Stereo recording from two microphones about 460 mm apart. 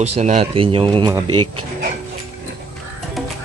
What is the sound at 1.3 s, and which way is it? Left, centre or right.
Music, right.